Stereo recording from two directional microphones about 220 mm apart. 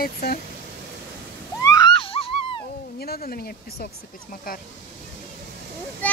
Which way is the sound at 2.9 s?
45° left (ahead or behind).